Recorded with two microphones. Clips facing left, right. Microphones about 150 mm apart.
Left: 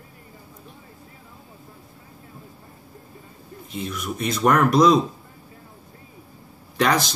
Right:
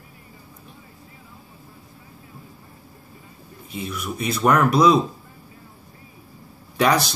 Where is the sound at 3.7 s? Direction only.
10° right (ahead or behind).